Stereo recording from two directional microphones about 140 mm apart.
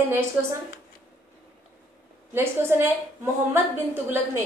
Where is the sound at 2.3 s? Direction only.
15° right (ahead or behind).